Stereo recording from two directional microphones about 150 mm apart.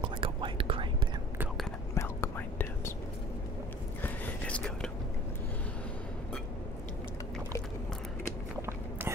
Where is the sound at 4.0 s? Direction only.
10° left (ahead or behind).